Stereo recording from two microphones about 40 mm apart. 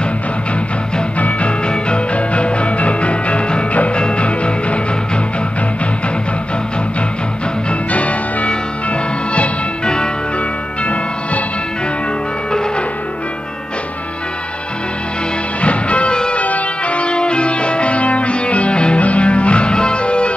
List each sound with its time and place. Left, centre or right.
1.7 s music: left
7.9 s change ringing: left
10.8 s music: left
15.6 s music: left